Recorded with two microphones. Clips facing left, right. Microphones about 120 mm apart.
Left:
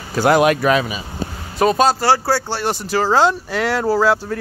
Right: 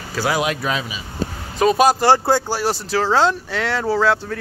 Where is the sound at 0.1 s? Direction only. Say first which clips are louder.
Left 7 dB; 55° left (ahead or behind).